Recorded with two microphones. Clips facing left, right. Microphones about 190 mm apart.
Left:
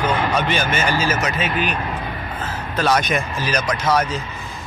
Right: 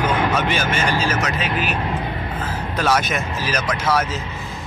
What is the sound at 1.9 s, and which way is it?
Music, 25° right (ahead or behind).